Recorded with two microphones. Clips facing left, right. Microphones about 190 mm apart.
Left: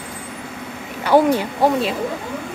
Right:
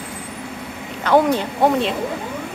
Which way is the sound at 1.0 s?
5° left (ahead or behind).